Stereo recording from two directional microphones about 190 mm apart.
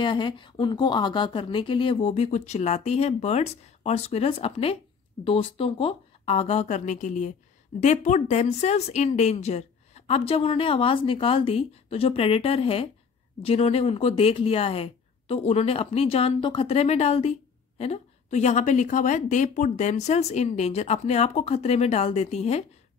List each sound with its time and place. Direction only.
0.0 s speech: 25° left (ahead or behind)